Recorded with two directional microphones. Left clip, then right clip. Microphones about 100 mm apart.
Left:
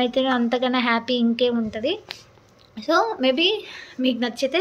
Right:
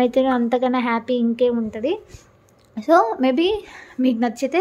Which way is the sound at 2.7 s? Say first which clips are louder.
Right 5 dB; 60° right (ahead or behind).